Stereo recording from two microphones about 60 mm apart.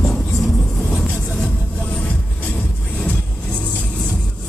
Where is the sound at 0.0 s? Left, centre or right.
Centre.